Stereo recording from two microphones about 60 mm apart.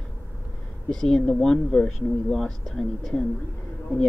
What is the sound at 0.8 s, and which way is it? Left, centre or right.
Speech, centre.